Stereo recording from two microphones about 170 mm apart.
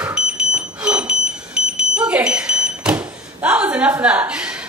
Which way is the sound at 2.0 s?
5° right (ahead or behind).